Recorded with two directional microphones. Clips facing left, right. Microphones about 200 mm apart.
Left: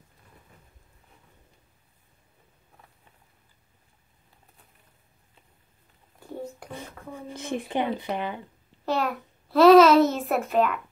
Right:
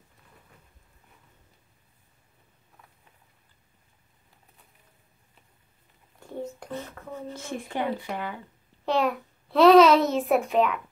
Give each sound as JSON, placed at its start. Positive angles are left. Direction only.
{"t": 6.6, "sound": "speech", "side_deg": 10}
{"t": 8.8, "sound": "a child's voice", "side_deg": 0}